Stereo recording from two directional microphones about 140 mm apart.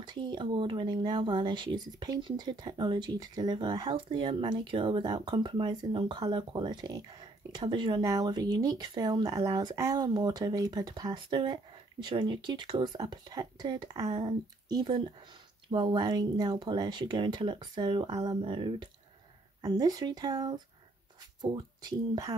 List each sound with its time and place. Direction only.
0.0 s speech: 35° right (ahead or behind)